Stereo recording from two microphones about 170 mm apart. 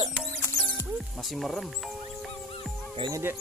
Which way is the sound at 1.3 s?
Centre (ahead or behind).